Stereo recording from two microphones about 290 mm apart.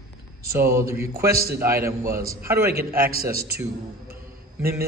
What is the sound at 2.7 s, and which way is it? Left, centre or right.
Speech, right.